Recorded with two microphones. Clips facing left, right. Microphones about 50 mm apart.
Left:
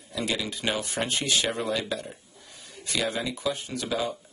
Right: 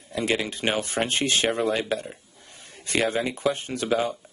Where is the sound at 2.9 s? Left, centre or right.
Right.